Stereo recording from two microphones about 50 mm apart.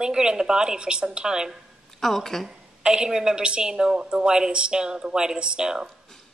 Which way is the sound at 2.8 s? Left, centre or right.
Centre.